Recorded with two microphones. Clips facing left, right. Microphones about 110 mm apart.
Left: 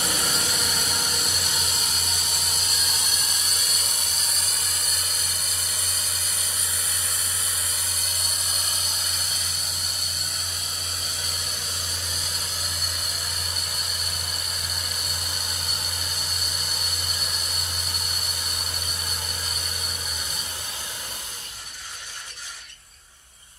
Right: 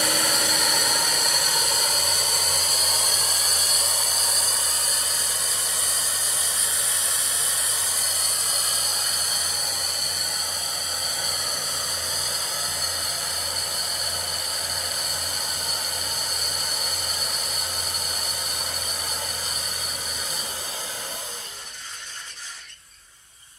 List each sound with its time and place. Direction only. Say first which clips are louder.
0.0 s vehicle: right 3 dB; 65° right (ahead or behind); by 4.6 s 35° right (ahead or behind)